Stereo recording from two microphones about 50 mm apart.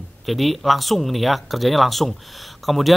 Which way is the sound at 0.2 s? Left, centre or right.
Centre.